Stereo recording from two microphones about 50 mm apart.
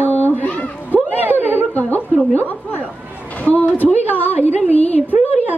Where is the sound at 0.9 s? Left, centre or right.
Right.